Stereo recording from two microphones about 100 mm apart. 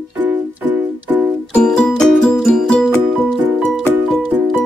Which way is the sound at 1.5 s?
10° left (ahead or behind).